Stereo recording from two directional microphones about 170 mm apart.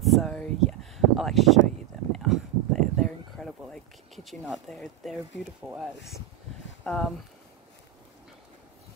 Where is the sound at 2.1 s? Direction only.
Centre (ahead or behind).